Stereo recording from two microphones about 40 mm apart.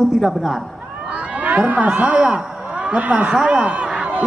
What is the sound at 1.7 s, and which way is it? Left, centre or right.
Speech, right.